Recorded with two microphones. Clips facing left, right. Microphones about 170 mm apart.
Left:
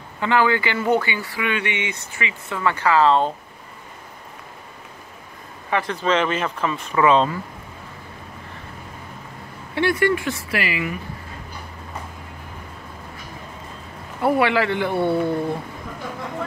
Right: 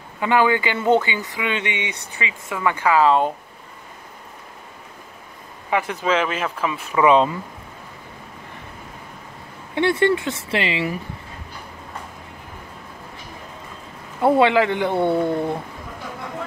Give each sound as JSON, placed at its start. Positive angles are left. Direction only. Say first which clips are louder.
{"t": 0.2, "sound": "speech", "louder": "right 1 dB", "side_deg": -15}
{"t": 5.7, "sound": "speech", "louder": "even", "side_deg": -10}
{"t": 9.8, "sound": "speech", "louder": "right 1 dB", "side_deg": -25}
{"t": 14.2, "sound": "speech", "louder": "right 3 dB", "side_deg": -20}